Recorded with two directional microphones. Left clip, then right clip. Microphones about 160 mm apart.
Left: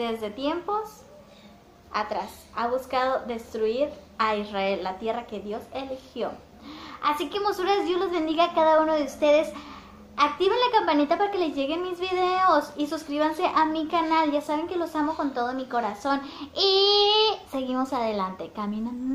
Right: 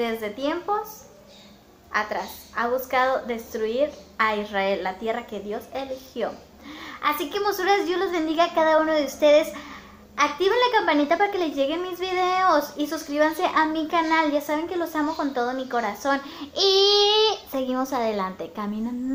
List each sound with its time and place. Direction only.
0.0 s a woman's voice: 5° right (ahead or behind)
1.9 s a woman's voice: 5° right (ahead or behind)